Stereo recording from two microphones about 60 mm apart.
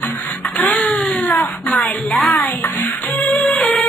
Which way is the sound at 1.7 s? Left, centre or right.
Centre.